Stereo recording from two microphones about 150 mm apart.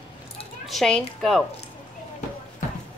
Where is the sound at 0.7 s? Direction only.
Centre (ahead or behind).